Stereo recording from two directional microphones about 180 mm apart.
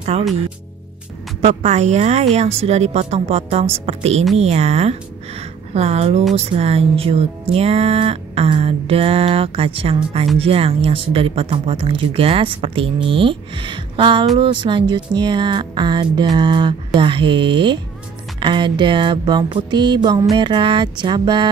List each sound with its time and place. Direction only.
0.1 s music: 35° right (ahead or behind)
1.4 s music: 40° right (ahead or behind)
10.4 s speech: 30° right (ahead or behind)